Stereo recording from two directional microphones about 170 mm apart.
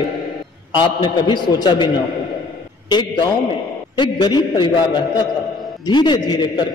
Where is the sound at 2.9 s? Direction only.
25° left (ahead or behind).